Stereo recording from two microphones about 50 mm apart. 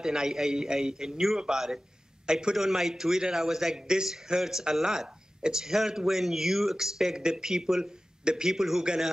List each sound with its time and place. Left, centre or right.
0.0 s a man's voice: centre